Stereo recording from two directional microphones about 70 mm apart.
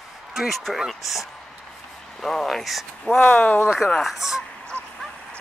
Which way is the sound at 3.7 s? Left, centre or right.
Centre.